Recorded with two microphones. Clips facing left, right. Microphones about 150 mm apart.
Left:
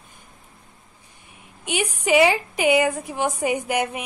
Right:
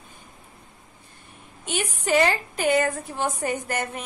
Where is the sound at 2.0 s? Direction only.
10° left (ahead or behind).